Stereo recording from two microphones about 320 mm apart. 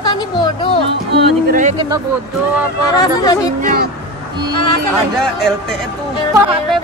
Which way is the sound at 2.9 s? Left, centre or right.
Centre.